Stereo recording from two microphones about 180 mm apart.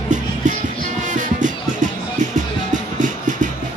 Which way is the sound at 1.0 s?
45° right (ahead or behind).